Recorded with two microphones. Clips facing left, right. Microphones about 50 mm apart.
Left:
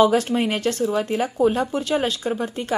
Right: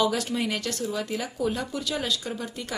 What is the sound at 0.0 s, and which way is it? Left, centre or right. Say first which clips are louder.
Speech: left 8 dB; left.